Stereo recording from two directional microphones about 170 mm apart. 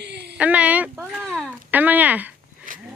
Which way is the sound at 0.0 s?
80° right.